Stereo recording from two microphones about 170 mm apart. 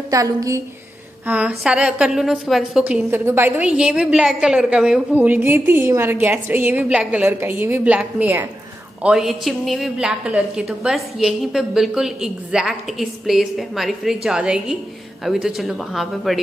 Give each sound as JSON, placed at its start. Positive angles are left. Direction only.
{"t": 0.1, "sound": "a woman's voice", "side_deg": -20}
{"t": 1.2, "sound": "a woman's voice", "side_deg": -10}